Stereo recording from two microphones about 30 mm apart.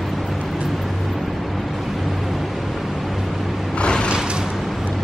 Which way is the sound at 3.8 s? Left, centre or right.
Left.